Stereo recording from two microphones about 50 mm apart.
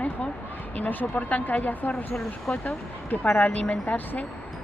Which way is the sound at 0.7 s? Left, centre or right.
Left.